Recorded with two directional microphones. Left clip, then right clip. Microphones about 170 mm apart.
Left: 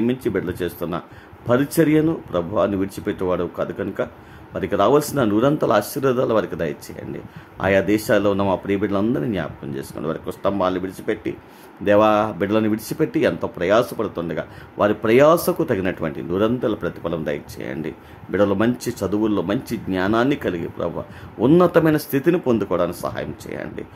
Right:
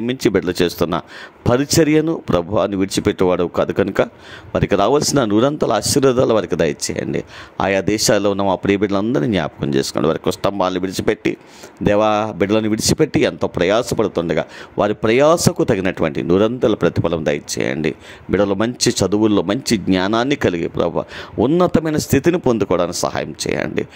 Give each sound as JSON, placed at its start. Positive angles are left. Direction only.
{"t": 0.0, "sound": "a man's voice", "side_deg": -55}